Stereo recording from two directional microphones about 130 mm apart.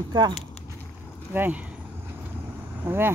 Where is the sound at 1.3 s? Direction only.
10° right (ahead or behind).